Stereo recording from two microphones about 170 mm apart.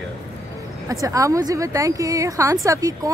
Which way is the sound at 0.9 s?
20° right (ahead or behind).